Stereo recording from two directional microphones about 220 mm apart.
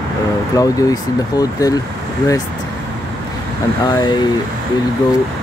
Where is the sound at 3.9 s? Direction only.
20° left (ahead or behind).